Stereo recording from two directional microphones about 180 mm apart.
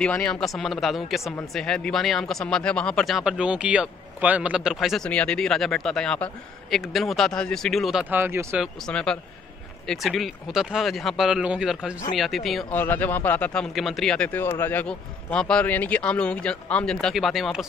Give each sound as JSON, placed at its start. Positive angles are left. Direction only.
{"t": 0.0, "sound": "speech", "side_deg": 5}
{"t": 8.8, "sound": "speech", "side_deg": 5}
{"t": 12.7, "sound": "a man's voice", "side_deg": 10}